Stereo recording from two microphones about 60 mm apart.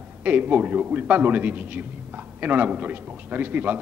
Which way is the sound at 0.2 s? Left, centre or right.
Right.